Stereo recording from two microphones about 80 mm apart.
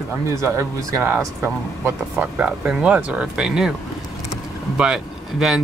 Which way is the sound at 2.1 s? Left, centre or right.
Centre.